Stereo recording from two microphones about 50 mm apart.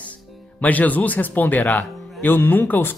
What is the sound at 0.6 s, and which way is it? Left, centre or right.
Speech, left.